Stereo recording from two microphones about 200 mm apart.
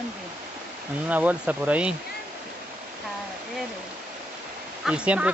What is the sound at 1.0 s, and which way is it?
Speech, 5° right (ahead or behind).